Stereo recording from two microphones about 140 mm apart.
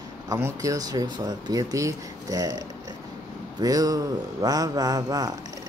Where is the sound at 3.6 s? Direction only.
25° right (ahead or behind).